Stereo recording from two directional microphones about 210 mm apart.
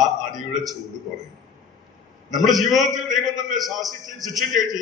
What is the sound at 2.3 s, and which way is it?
A man's voice, centre (ahead or behind).